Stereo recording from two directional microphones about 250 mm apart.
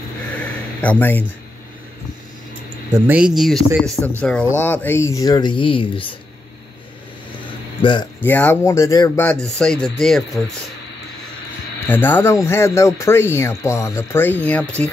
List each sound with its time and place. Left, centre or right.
0.7 s speech: centre
2.9 s speech: centre; by 6.1 s left
7.4 s speech: centre
11.9 s speech: centre